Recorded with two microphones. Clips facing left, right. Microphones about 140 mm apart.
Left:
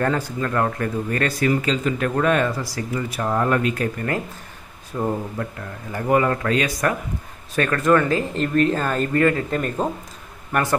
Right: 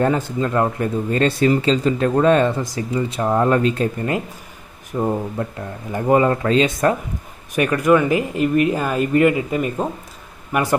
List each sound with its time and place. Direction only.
0.0 s speech: 20° right (ahead or behind)
7.5 s speech: 15° right (ahead or behind)